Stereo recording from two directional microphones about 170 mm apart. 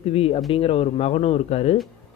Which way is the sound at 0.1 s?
35° left (ahead or behind).